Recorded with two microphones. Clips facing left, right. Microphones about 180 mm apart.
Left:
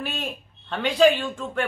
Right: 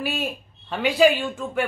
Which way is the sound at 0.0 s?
10° right (ahead or behind).